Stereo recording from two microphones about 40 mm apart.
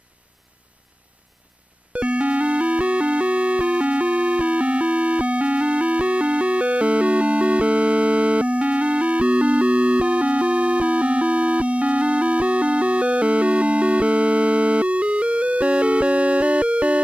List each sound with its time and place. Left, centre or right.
1.9 s music: right